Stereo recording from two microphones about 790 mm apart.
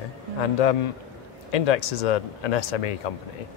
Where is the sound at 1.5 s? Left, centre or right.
Left.